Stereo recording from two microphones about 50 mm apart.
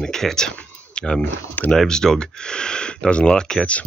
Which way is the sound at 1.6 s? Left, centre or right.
Left.